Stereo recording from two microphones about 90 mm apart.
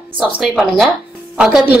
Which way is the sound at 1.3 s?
10° right (ahead or behind).